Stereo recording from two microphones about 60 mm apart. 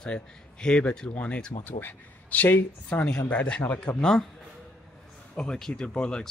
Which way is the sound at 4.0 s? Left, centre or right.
Centre.